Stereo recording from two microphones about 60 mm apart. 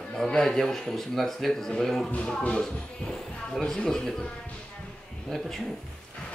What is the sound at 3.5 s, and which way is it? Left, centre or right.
Speech, centre.